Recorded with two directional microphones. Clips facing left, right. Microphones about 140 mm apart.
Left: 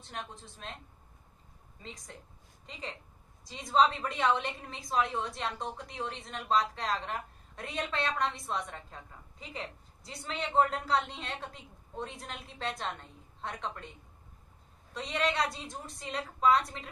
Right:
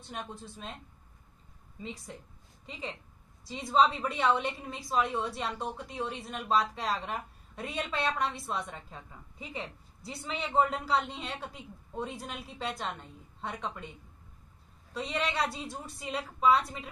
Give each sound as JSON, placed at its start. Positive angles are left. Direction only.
{"t": 0.0, "sound": "a woman's voice", "side_deg": -5}
{"t": 2.6, "sound": "a woman's voice", "side_deg": 0}
{"t": 15.0, "sound": "a woman's voice", "side_deg": 0}